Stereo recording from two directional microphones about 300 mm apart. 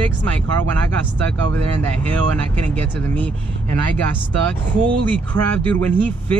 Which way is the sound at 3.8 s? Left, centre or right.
Right.